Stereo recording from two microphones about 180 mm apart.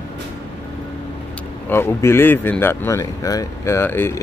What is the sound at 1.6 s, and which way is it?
Speech, 10° left (ahead or behind).